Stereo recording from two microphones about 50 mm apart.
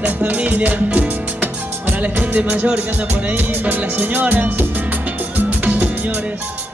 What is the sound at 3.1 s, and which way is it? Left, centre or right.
Music, right.